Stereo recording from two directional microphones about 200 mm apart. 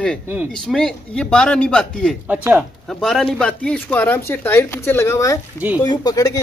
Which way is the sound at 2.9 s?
5° left (ahead or behind).